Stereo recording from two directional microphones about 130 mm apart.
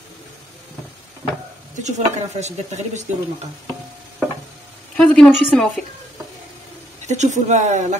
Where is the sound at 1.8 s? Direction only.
65° right (ahead or behind).